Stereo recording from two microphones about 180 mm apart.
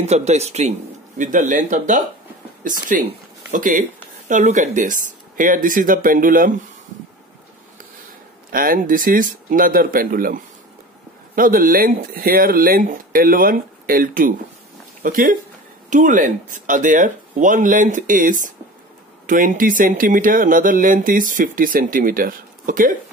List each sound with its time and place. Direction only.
0.0 s speech: 40° right (ahead or behind)
8.5 s speech: 50° right (ahead or behind)